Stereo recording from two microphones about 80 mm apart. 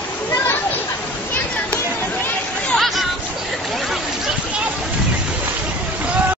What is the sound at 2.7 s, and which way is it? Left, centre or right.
Chatter, centre.